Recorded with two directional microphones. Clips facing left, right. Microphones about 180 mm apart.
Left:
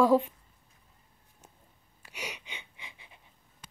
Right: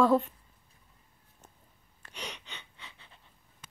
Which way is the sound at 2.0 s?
10° left (ahead or behind).